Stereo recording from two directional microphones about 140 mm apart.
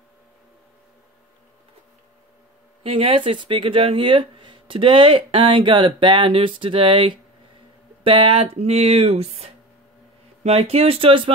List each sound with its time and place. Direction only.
2.8 s speech: 40° right (ahead or behind)